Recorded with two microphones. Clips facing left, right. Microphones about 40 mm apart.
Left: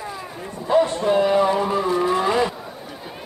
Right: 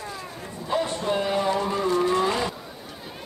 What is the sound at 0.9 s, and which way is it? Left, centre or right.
Speech, centre.